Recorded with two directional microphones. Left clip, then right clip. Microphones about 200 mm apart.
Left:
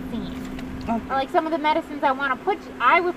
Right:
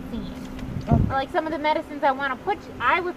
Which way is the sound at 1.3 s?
15° left (ahead or behind).